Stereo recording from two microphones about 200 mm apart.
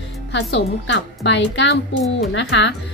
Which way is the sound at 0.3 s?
60° left (ahead or behind).